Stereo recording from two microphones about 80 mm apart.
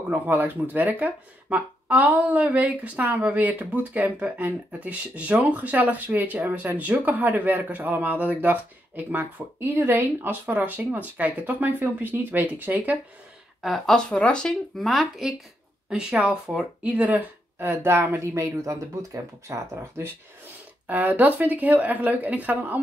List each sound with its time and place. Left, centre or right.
0.3 s speech: right
13.6 s a woman's voice: centre
14.9 s a woman's voice: centre
16.8 s speech: centre
18.2 s speech: right
20.8 s speech: right